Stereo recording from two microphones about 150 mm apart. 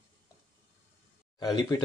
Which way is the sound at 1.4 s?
25° left (ahead or behind).